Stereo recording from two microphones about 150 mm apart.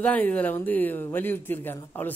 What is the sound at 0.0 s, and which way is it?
A man's voice, 10° left (ahead or behind).